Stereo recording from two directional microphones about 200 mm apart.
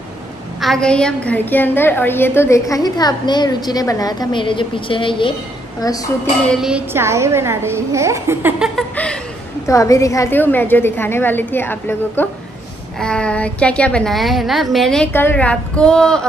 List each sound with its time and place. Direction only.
0.6 s a woman's voice: centre (ahead or behind); by 5.3 s 25° left (ahead or behind)
6.4 s a woman's voice: centre (ahead or behind)
8.7 s chuckle: 5° left (ahead or behind)
9.7 s a woman's voice: 15° left (ahead or behind)